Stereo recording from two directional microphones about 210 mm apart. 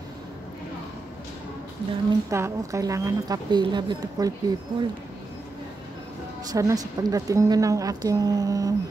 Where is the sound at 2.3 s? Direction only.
15° right (ahead or behind).